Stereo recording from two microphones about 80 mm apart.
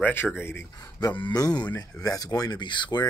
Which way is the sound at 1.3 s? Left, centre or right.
Left.